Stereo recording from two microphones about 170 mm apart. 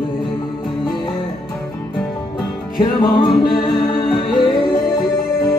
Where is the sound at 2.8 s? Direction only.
25° left (ahead or behind).